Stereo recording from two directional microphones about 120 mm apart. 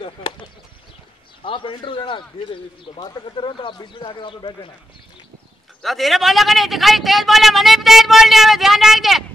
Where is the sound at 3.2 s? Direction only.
45° left (ahead or behind).